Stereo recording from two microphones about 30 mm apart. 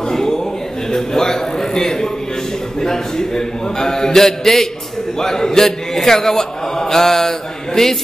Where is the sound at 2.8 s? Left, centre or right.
Centre.